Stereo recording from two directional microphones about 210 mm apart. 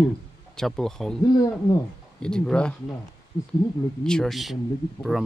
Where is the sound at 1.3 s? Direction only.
15° left (ahead or behind).